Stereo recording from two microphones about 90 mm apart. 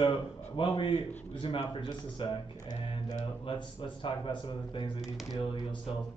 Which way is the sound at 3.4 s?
70° left (ahead or behind).